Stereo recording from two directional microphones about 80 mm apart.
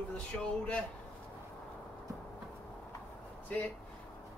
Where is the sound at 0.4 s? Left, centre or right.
Centre.